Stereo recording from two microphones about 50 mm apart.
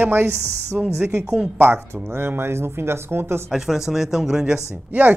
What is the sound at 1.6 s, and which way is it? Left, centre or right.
Speech, right.